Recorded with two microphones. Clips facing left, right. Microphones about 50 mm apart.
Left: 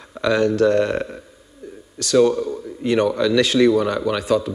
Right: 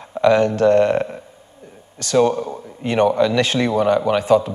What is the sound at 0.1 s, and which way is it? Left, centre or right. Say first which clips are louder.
Speech: right 3 dB; centre.